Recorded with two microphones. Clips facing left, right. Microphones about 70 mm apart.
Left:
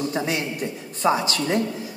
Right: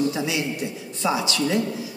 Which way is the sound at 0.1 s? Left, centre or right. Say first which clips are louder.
Even; left.